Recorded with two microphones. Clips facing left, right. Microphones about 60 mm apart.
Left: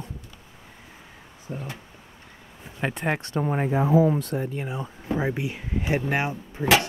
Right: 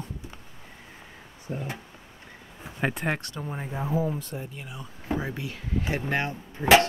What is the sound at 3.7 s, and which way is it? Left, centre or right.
Speech, left.